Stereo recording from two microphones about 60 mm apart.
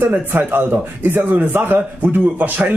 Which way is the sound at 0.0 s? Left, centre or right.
Right.